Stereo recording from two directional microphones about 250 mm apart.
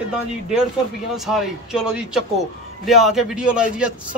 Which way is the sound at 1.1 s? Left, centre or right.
Centre.